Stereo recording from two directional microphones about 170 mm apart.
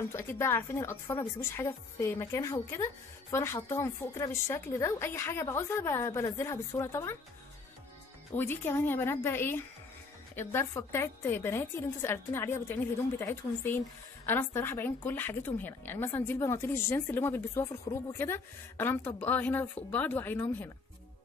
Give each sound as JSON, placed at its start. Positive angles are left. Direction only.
{"t": 0.1, "sound": "a woman's voice", "side_deg": 15}
{"t": 8.4, "sound": "a woman's voice", "side_deg": 10}